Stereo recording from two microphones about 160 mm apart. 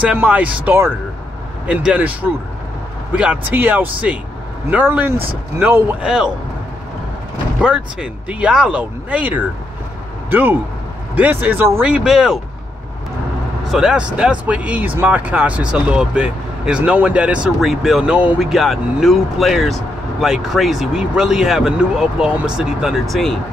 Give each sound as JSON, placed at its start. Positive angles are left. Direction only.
{"t": 0.0, "sound": "speech", "side_deg": -10}
{"t": 7.6, "sound": "speech", "side_deg": -5}
{"t": 13.7, "sound": "speech", "side_deg": -5}